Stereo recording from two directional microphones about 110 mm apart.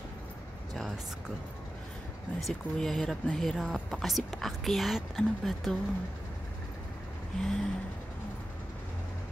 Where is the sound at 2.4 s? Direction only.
5° left (ahead or behind).